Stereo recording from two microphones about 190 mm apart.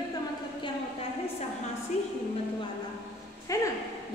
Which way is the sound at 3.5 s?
15° left (ahead or behind).